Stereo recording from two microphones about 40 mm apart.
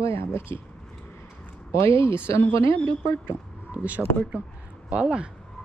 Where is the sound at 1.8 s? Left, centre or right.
Left.